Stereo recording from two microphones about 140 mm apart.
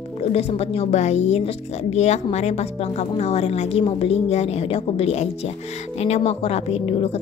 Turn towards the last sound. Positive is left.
turn(degrees=45)  # may be behind; listen again after turning